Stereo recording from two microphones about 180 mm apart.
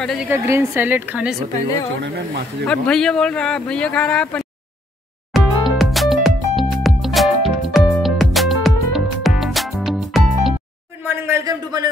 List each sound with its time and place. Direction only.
0.0 s speech: centre (ahead or behind)
0.3 s a woman's voice: 10° right (ahead or behind)
2.0 s speech: 65° right (ahead or behind)
2.6 s speech: 5° left (ahead or behind)
5.3 s music: centre (ahead or behind)
11.1 s a sound: 15° right (ahead or behind)